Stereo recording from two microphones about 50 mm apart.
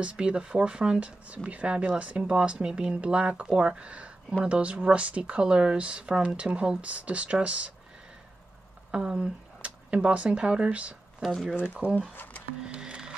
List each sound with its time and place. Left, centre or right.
0.0 s speech: right
8.9 s speech: centre
11.2 s speech: centre
11.8 s speech: left
12.2 s a sound: left
12.6 s music: centre